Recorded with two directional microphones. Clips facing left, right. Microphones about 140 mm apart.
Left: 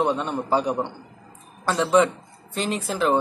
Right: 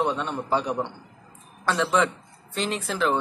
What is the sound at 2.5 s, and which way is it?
Speech, 35° left (ahead or behind).